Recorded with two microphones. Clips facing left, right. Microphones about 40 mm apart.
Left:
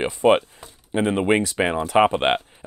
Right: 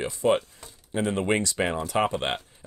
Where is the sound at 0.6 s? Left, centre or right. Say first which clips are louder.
Left 5 dB; left.